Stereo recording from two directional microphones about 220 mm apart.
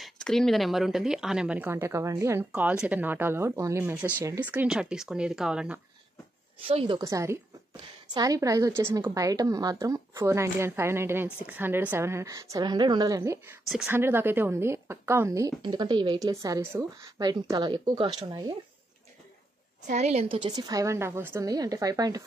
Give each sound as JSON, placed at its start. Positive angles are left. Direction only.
{"t": 0.0, "sound": "a woman's voice", "side_deg": 0}
{"t": 6.7, "sound": "a woman's voice", "side_deg": -25}
{"t": 19.9, "sound": "a woman's voice", "side_deg": -30}